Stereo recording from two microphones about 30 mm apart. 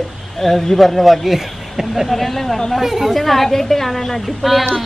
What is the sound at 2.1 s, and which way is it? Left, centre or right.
Speech, centre.